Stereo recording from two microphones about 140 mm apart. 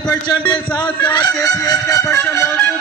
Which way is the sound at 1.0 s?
30° left (ahead or behind).